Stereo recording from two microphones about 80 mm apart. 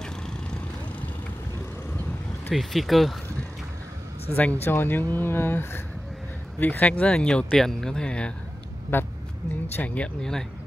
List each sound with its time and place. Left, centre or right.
2.5 s speech: centre
4.4 s speech: left
8.9 s speech: left
9.8 s speech: centre